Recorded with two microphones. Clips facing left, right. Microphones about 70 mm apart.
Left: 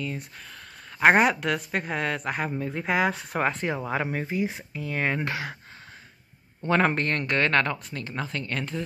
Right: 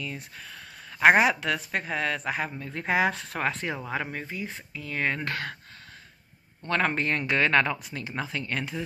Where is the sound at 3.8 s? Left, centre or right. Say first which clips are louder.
Left 4 dB; centre.